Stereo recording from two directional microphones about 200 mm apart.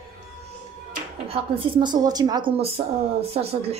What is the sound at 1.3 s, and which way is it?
A woman's voice, 20° right (ahead or behind).